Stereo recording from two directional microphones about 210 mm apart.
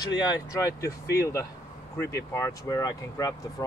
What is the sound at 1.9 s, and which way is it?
Speech, 15° left (ahead or behind).